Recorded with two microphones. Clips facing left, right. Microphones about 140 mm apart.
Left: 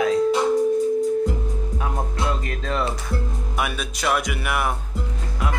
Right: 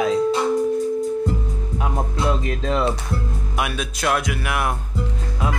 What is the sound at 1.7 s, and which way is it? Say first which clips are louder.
Music: right 5 dB; 15° right (ahead or behind).